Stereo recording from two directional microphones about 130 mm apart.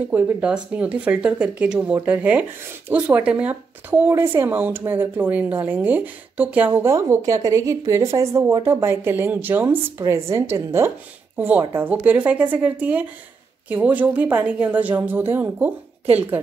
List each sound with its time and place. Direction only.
0.1 s a woman's voice: 10° right (ahead or behind)